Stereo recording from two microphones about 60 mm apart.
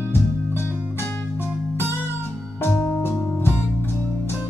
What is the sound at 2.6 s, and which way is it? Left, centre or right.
Music, left.